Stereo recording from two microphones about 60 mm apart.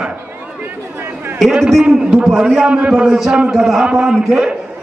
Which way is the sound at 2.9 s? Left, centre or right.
Centre.